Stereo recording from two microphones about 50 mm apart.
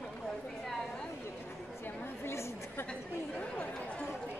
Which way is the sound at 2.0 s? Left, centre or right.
Left.